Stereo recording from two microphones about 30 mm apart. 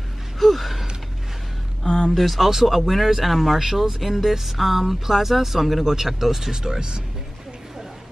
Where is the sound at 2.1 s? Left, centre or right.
Centre.